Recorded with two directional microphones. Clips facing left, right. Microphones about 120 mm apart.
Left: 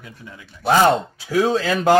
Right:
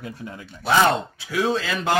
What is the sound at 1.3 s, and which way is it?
Speech, 40° left (ahead or behind).